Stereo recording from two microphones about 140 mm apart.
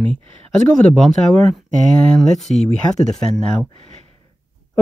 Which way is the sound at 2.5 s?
55° right (ahead or behind).